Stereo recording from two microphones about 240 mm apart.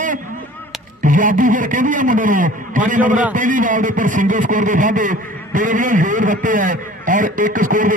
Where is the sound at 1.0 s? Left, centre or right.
Right.